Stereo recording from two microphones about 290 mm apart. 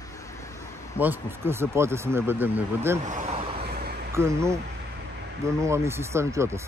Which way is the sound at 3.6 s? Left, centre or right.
Right.